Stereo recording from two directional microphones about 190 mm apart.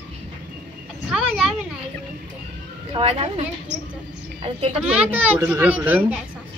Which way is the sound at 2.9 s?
30° right (ahead or behind).